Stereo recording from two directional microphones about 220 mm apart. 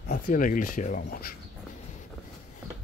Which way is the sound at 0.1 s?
35° left (ahead or behind).